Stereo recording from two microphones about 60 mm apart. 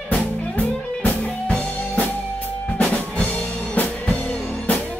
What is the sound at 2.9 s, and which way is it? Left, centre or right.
Music, left.